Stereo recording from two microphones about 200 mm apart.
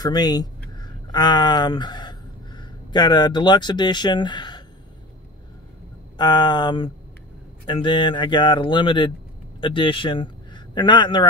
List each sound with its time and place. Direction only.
0.0 s speech: 20° left (ahead or behind)
6.1 s a man's voice: 20° left (ahead or behind)